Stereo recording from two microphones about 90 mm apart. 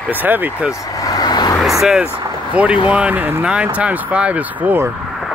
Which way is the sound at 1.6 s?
5° right (ahead or behind).